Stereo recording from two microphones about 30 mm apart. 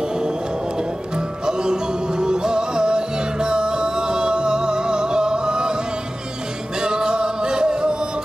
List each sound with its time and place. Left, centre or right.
1.1 s music: right
6.8 s music: right